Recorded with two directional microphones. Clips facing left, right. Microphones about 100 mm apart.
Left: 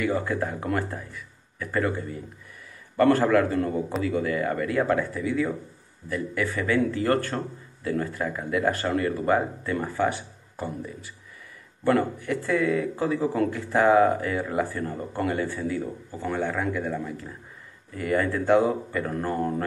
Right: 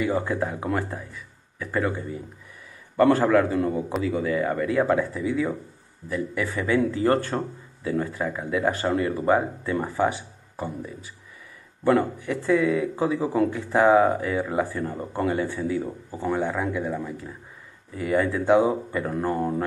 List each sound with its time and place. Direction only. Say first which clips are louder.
0.0 s speech: right 1 dB; 15° right (ahead or behind)
11.8 s speech: right 2 dB; 10° right (ahead or behind)